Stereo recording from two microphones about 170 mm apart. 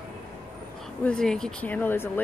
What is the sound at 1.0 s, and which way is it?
Speech, 5° left (ahead or behind).